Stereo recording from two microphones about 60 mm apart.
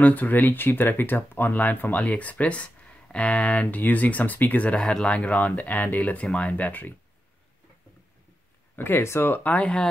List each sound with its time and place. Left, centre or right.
0.0 s speech: left
4.7 s speech: centre
8.7 s speech: left